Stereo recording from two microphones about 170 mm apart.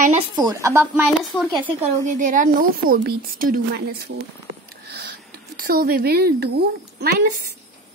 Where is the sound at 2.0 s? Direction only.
50° right (ahead or behind).